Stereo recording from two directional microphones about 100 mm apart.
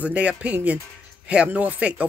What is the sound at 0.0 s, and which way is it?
Speech, 10° right (ahead or behind).